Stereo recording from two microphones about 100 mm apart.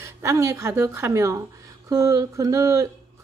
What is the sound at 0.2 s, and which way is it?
A woman's voice, 30° right (ahead or behind).